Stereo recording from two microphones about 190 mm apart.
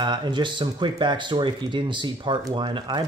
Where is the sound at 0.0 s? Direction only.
25° right (ahead or behind).